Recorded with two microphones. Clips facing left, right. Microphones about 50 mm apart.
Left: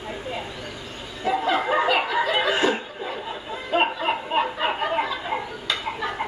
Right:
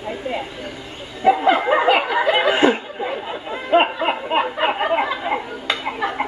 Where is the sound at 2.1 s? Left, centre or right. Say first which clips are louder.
Right 5 dB; right.